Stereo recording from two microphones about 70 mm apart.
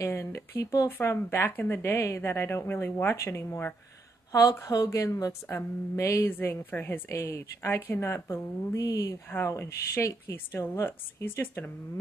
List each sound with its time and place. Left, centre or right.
0.2 s a woman's voice: left
0.8 s speech: left
1.8 s speech: left
4.3 s a woman's voice: left
6.2 s speech: left
7.1 s a woman's voice: left
9.5 s speech: left